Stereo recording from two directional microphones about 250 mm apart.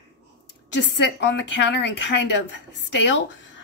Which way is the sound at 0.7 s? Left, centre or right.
Left.